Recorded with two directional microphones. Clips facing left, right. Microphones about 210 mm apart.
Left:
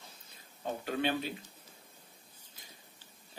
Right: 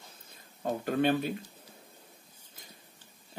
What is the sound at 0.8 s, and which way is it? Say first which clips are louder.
Speech: right 6 dB; 50° right (ahead or behind).